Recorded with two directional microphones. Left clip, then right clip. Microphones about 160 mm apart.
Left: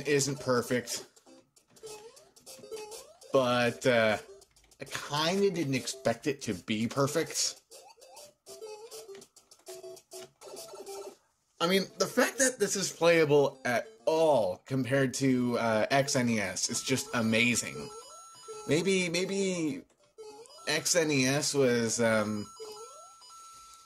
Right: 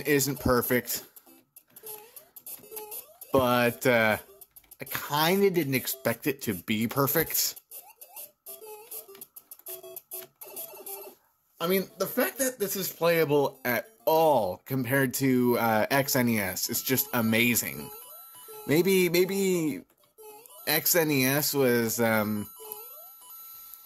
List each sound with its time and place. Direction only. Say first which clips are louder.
0.0 s speech: right 3 dB; 55° right (ahead or behind)
3.3 s speech: right 3 dB; 50° right (ahead or behind)
11.5 s speech: even; 25° right (ahead or behind); by 22.5 s 50° right (ahead or behind)